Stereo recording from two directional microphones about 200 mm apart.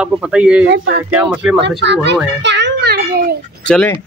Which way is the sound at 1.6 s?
60° right (ahead or behind).